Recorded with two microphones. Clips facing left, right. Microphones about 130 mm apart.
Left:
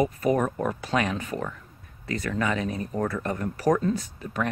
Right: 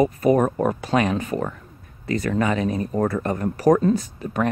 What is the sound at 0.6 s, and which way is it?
Speech, 35° right (ahead or behind).